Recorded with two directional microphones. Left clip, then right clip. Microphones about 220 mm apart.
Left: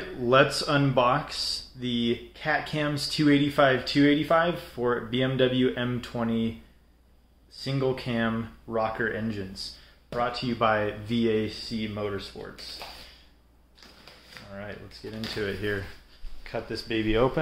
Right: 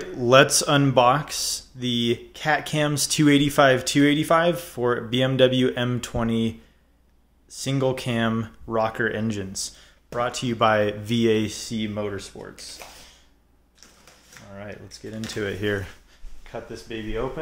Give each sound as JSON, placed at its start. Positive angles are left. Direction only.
{"t": 0.2, "sound": "speech", "side_deg": -50}
{"t": 7.6, "sound": "speech", "side_deg": -50}
{"t": 14.5, "sound": "speech", "side_deg": -45}
{"t": 16.4, "sound": "speech", "side_deg": 5}